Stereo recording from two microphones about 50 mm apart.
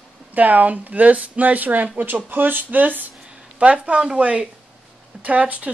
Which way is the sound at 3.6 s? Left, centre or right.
Right.